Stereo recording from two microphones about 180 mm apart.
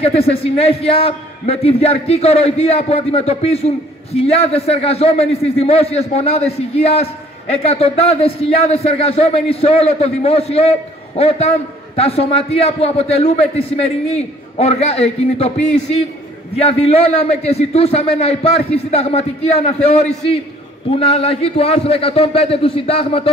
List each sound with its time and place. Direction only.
0.0 s a man's voice: 35° left (ahead or behind)
16.5 s a man's voice: 35° left (ahead or behind)